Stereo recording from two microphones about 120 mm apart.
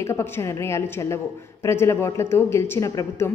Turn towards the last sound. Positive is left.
turn(degrees=25)  # may be behind; listen again after turning